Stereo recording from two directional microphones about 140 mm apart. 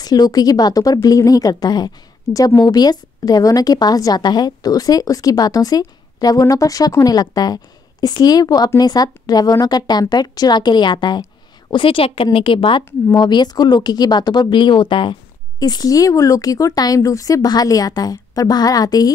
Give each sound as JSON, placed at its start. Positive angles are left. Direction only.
{"t": 0.0, "sound": "a woman's voice", "side_deg": 30}